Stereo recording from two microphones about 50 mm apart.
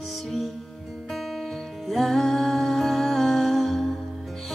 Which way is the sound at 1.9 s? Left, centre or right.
Centre.